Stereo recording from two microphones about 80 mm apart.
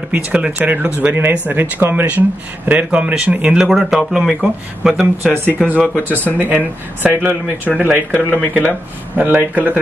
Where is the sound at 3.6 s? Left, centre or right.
Centre.